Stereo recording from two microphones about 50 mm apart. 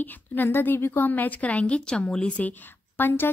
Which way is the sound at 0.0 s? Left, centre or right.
Left.